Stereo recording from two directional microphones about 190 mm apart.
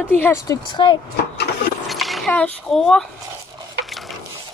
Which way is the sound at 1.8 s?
Centre (ahead or behind).